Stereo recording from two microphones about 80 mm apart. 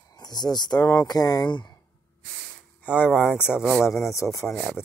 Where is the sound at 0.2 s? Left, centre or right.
Left.